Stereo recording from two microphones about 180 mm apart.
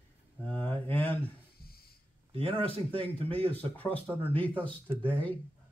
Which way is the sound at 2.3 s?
30° right (ahead or behind).